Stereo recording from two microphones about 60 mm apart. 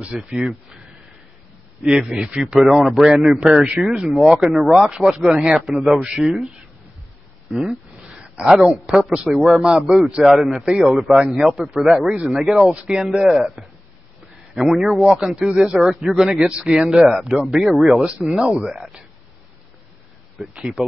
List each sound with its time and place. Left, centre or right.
0.0 s a man's voice: right
0.3 s a man's voice: centre
1.9 s a man's voice: centre
7.5 s speech: centre
8.1 s a sound: centre
9.3 s a man's voice: centre
10.0 s a man's voice: centre
10.3 s a man's voice: centre
11.3 s a man's voice: centre
16.1 s speech: centre
16.4 s a man's voice: centre
16.9 s a man's voice: centre